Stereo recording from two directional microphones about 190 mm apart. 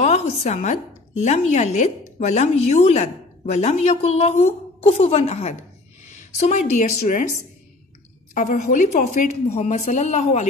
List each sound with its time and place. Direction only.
0.0 s a woman's voice: 35° left (ahead or behind)
8.4 s a woman's voice: 40° left (ahead or behind)